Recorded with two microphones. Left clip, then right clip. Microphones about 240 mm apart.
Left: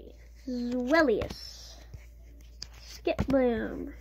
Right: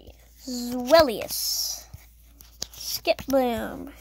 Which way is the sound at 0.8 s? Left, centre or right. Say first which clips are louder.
Right 7 dB; right.